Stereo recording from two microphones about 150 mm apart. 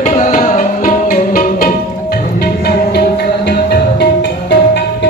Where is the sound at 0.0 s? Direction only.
50° left (ahead or behind); by 4.1 s 90° left.